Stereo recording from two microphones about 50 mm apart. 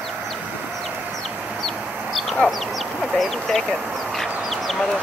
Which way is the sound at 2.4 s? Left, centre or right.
Left.